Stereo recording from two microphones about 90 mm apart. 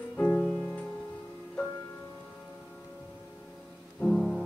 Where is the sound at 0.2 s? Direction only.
10° left (ahead or behind).